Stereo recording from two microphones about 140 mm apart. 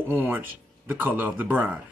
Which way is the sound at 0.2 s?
15° right (ahead or behind).